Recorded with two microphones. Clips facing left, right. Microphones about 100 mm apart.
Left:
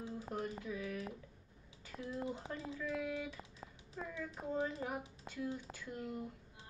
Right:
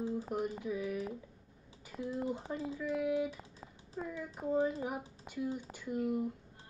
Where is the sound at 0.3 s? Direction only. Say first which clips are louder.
Right 5 dB; 15° right (ahead or behind).